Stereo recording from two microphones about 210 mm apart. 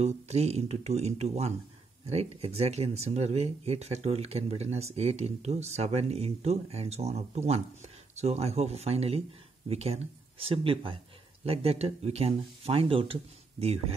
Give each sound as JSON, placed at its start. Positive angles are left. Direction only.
{"t": 0.0, "sound": "speech", "side_deg": -30}